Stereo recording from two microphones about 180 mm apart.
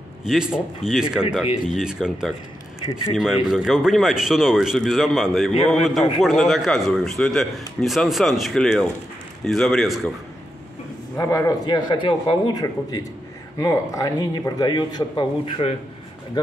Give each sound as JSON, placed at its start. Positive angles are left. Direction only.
{"t": 0.2, "sound": "a man's voice", "side_deg": -5}
{"t": 3.4, "sound": "a man's voice", "side_deg": 0}
{"t": 11.1, "sound": "speech", "side_deg": 20}